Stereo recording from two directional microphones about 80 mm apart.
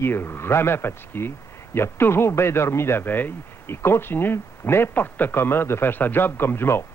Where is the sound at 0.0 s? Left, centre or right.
Left.